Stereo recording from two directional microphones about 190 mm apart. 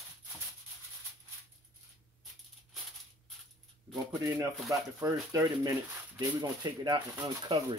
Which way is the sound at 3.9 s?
15° right (ahead or behind).